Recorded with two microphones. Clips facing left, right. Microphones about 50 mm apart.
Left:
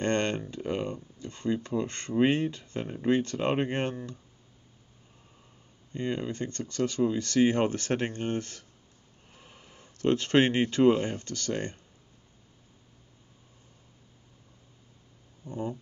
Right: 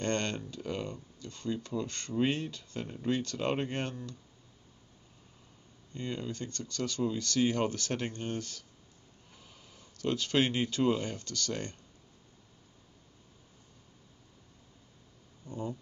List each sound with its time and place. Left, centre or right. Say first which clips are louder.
0.0 s speech: left 5 dB; left
5.9 s speech: left 6 dB; left
15.4 s speech: left 4 dB; left